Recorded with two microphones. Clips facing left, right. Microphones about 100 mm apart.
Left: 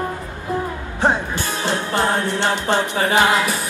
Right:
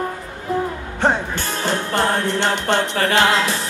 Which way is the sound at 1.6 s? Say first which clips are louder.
Right 1 dB; 50° right (ahead or behind).